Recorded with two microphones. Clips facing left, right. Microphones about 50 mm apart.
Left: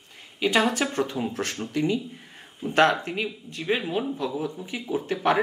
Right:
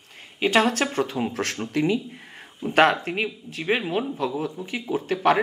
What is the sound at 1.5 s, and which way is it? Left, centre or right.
A woman's voice, right.